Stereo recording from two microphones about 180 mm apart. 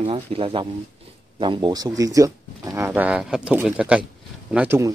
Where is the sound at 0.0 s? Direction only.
30° right (ahead or behind).